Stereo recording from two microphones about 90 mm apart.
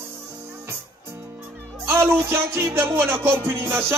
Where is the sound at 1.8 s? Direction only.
30° right (ahead or behind).